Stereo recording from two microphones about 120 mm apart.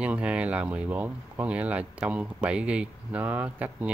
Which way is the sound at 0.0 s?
10° right (ahead or behind).